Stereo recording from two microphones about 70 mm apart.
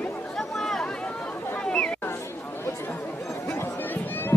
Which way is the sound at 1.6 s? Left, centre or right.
Centre.